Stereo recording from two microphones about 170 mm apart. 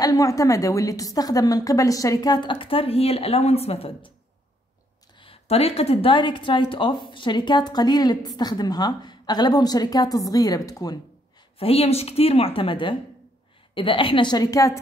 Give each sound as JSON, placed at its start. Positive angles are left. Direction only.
{"t": 0.0, "sound": "speech", "side_deg": 20}
{"t": 5.1, "sound": "speech", "side_deg": 30}
{"t": 11.5, "sound": "a woman's voice", "side_deg": 35}